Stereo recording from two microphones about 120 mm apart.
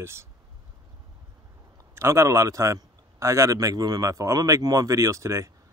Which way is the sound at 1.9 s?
25° right (ahead or behind).